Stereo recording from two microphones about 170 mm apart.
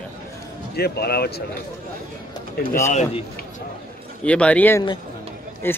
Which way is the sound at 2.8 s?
45° left (ahead or behind).